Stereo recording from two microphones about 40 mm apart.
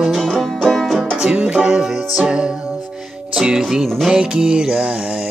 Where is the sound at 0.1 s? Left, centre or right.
Centre.